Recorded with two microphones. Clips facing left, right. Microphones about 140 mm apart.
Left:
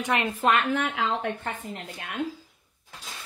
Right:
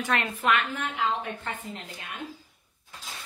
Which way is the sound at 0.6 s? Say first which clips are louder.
Left 3 dB; 80° left.